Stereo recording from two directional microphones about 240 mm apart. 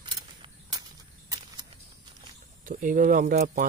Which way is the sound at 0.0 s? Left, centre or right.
Centre.